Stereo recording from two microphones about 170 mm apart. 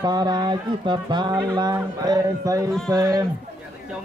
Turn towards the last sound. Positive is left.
turn(degrees=-15)  # may be behind; listen again after turning